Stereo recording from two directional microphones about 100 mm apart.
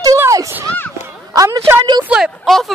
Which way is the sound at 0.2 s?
35° right (ahead or behind).